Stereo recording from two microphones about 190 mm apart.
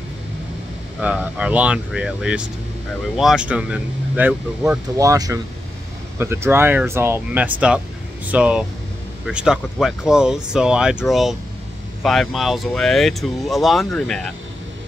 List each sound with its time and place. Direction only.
1.0 s speech: 5° right (ahead or behind)
4.9 s speech: 20° right (ahead or behind); by 14.2 s 5° left (ahead or behind)